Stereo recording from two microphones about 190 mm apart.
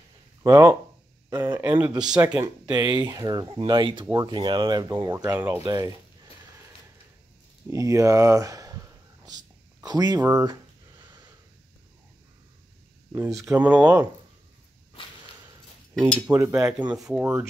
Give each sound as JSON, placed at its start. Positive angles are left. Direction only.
{"t": 0.4, "sound": "speech", "side_deg": -20}
{"t": 2.3, "sound": "speech", "side_deg": -20}
{"t": 7.7, "sound": "speech", "side_deg": -15}
{"t": 13.1, "sound": "speech", "side_deg": -15}
{"t": 15.9, "sound": "speech", "side_deg": 0}
{"t": 16.3, "sound": "speech", "side_deg": -15}